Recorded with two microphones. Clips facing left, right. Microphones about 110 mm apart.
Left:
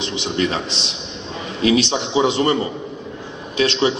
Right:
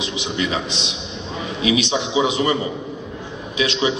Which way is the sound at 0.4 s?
35° left (ahead or behind).